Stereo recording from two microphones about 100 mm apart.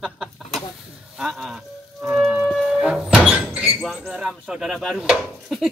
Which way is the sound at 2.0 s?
5° right (ahead or behind).